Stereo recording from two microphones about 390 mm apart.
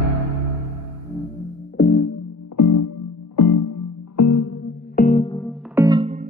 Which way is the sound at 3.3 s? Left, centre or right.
Left.